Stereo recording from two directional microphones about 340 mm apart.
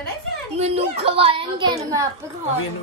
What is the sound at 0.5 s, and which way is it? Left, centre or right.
A man's voice, centre.